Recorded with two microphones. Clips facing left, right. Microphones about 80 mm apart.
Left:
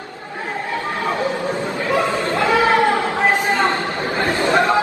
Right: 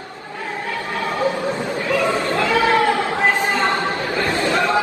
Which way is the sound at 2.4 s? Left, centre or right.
Left.